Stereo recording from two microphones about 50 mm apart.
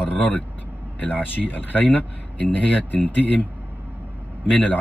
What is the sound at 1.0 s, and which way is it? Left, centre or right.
A man's voice, left.